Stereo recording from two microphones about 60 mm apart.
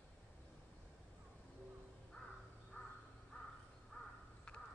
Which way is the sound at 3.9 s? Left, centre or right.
Centre.